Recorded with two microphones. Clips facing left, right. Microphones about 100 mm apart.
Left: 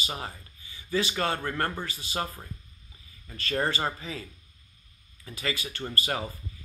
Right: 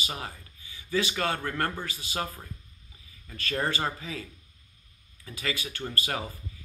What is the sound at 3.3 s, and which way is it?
Speech, 20° left (ahead or behind).